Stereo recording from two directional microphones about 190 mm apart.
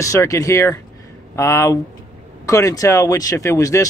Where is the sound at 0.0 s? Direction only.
15° left (ahead or behind).